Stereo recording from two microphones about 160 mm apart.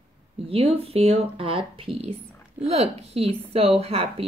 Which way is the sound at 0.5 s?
40° right (ahead or behind).